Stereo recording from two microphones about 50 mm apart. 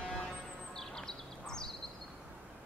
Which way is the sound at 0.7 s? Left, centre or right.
Centre.